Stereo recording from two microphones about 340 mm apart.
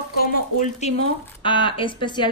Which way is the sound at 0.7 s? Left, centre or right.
Centre.